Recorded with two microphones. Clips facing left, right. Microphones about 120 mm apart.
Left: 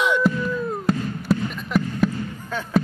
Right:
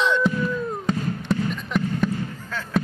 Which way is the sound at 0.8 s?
5° left (ahead or behind).